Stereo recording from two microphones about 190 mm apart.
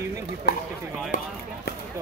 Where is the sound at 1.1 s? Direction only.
40° left (ahead or behind).